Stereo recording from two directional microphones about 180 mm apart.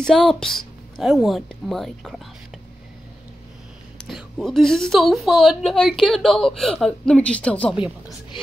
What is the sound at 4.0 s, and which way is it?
A woman's voice, centre (ahead or behind).